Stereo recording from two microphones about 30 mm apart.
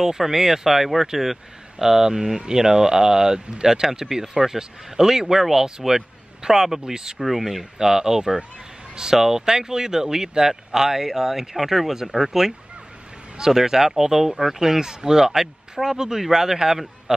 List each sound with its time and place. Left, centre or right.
0.2 s speech: centre
1.8 s speech: centre
7.2 s speech: centre
7.8 s speech: centre